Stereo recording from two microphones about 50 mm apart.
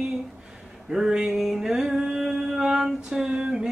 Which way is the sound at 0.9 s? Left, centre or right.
Centre.